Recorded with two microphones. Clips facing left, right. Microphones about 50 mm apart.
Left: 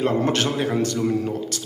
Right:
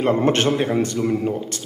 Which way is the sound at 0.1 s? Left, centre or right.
Right.